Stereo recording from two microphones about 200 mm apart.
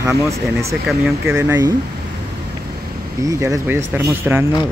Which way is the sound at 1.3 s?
15° right (ahead or behind).